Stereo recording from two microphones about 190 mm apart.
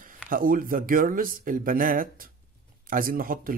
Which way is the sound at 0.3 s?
50° right (ahead or behind).